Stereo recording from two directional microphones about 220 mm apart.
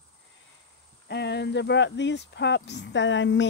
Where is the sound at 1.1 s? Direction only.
50° left (ahead or behind).